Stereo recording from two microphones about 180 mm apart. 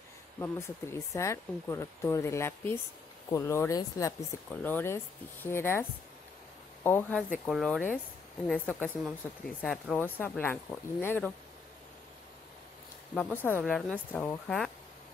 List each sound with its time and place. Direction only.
0.4 s speech: 15° left (ahead or behind)
13.1 s speech: 10° left (ahead or behind)